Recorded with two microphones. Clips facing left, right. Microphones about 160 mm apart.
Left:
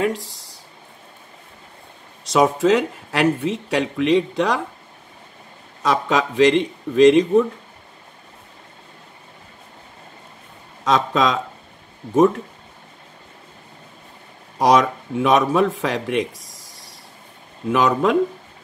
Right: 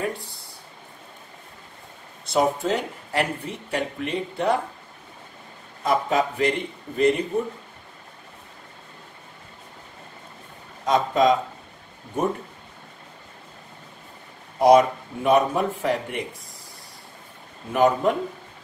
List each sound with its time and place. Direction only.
0.0 s speech: 90° left
2.2 s speech: 90° left
5.8 s speech: 90° left
10.8 s speech: 90° left
14.6 s speech: 90° left